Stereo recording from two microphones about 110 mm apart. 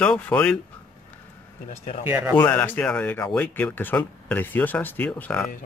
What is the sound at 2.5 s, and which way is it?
Speech, 15° left (ahead or behind).